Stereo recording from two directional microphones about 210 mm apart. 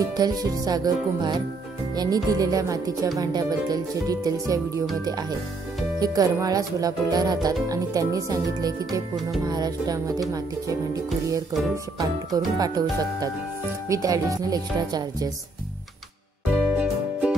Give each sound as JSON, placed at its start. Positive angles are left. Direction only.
{"t": 0.0, "sound": "speech", "side_deg": -20}
{"t": 5.9, "sound": "speech", "side_deg": -20}
{"t": 11.7, "sound": "speech", "side_deg": -15}
{"t": 13.8, "sound": "speech", "side_deg": -15}
{"t": 16.7, "sound": "music", "side_deg": -5}